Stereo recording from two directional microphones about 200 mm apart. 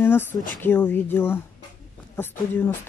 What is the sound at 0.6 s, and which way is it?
Speech, 10° left (ahead or behind).